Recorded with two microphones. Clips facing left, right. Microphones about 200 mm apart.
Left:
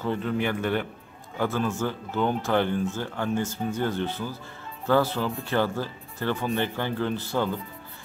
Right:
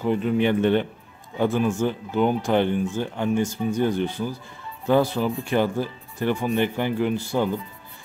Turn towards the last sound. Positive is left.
turn(degrees=-15)  # may be behind; listen again after turning